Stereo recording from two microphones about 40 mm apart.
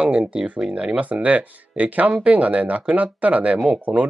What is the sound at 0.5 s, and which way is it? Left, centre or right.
Speech, right.